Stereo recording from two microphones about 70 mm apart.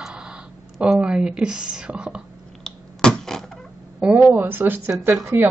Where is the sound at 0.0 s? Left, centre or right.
Centre.